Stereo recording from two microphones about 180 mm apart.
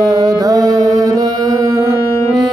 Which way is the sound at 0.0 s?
20° right (ahead or behind).